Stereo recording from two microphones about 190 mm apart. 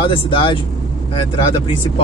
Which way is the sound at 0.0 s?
25° left (ahead or behind).